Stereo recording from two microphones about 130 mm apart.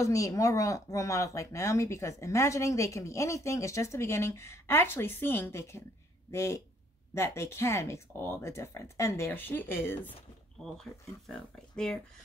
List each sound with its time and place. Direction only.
0.0 s speech: 25° left (ahead or behind)
10.6 s speech: 5° left (ahead or behind)